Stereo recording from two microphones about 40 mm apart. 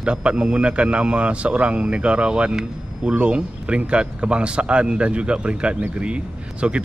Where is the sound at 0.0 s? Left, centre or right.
Right.